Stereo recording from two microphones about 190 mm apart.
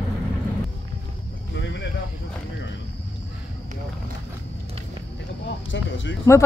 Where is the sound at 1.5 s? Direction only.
65° left (ahead or behind).